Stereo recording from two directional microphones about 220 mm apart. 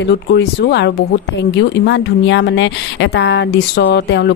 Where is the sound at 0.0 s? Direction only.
50° left (ahead or behind).